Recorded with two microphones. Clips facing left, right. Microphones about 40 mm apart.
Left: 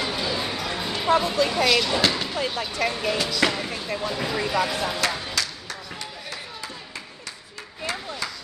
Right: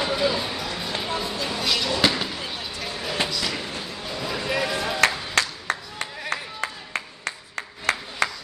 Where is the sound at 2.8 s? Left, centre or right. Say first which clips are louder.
Left 10 dB; left.